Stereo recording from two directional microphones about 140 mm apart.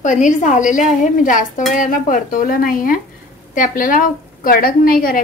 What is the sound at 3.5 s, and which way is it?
A woman's voice, 70° left (ahead or behind).